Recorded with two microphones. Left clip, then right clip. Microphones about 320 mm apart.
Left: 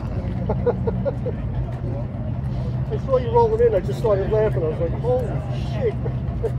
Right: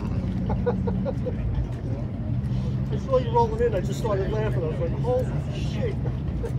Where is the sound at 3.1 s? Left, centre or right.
Left.